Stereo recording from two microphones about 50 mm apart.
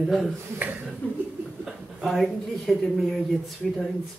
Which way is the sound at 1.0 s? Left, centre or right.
Left.